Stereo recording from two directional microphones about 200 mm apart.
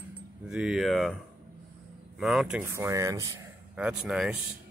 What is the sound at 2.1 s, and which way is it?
Speech, centre (ahead or behind).